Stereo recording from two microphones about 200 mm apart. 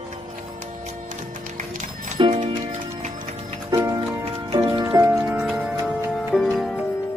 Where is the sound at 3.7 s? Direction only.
20° right (ahead or behind).